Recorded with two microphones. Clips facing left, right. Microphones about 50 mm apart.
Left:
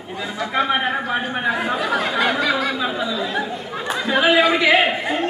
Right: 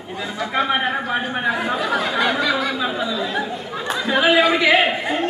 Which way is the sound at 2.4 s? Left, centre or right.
Left.